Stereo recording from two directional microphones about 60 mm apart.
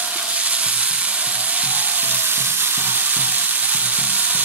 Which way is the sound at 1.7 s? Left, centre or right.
Right.